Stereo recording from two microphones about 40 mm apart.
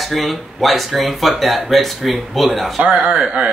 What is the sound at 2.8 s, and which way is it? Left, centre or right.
Speech, right.